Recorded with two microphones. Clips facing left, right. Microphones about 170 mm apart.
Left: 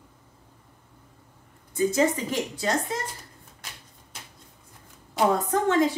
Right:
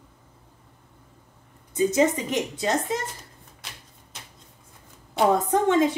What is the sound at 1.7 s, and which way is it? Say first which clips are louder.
A woman's voice: right 2 dB; 20° right (ahead or behind).